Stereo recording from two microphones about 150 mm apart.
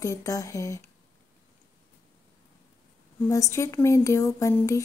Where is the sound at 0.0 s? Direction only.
20° left (ahead or behind).